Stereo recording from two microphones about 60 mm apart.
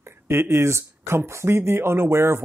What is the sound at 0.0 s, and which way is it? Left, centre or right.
Speech, right.